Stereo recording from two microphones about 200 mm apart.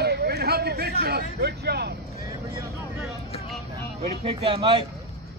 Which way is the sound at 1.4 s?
55° right (ahead or behind).